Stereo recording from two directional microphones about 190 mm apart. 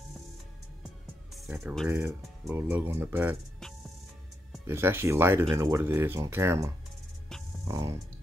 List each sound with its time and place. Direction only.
1.5 s speech: 10° right (ahead or behind)
4.6 s speech: 10° right (ahead or behind)